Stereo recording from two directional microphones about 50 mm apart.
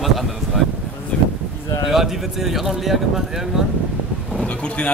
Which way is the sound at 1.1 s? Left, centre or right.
Left.